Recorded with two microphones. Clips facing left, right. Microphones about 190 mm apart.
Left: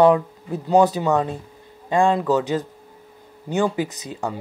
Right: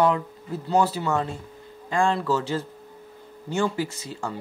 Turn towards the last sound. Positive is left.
turn(degrees=15)  # may be behind; listen again after turning